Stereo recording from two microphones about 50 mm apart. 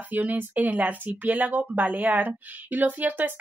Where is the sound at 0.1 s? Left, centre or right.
Right.